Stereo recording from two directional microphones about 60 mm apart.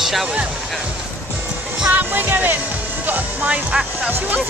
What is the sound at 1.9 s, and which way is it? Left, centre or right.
Speech, right.